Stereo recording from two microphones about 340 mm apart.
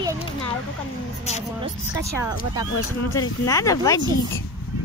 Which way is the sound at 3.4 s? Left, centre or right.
Centre.